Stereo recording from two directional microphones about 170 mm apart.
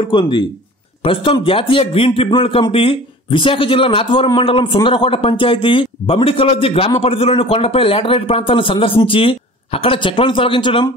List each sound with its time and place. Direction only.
0.0 s speech: 25° left (ahead or behind)